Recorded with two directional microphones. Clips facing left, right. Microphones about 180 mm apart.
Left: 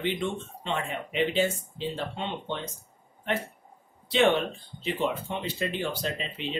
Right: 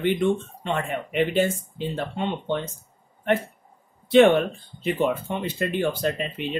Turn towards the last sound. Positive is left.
turn(degrees=-55)  # may be behind; listen again after turning